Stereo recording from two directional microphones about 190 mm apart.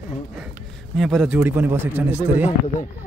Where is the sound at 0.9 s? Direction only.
Centre (ahead or behind).